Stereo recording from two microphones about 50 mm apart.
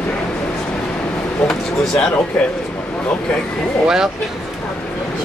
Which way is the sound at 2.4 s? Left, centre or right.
Centre.